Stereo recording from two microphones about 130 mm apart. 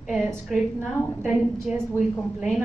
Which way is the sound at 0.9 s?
20° left (ahead or behind).